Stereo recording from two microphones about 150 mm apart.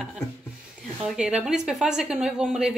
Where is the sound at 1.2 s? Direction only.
5° right (ahead or behind).